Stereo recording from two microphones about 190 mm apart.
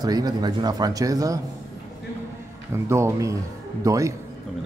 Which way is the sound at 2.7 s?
15° right (ahead or behind).